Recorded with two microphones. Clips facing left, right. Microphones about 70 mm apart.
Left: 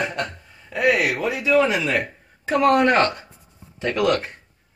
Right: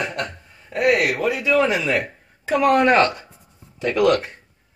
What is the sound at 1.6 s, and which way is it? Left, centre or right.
Speech, centre.